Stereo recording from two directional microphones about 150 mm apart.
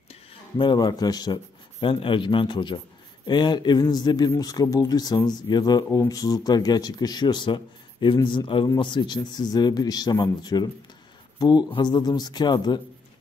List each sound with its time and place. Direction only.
0.1 s speech: 35° left (ahead or behind)